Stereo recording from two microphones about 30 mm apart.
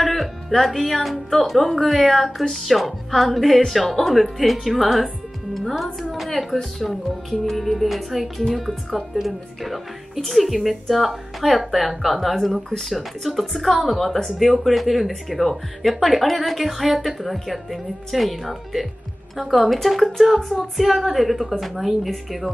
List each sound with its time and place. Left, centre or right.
0.0 s music: centre
0.6 s speech: centre